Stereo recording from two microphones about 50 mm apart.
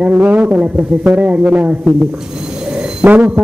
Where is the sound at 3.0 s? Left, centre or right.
Right.